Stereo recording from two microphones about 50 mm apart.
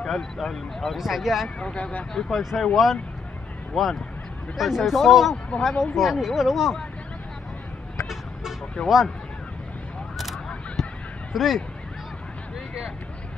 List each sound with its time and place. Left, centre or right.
0.0 s speech: centre
1.6 s speech: left
2.1 s speech: centre
8.8 s speech: centre
10.8 s honk: centre
11.3 s speech: centre